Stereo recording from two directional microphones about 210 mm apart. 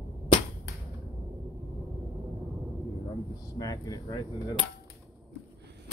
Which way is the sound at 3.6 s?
15° left (ahead or behind).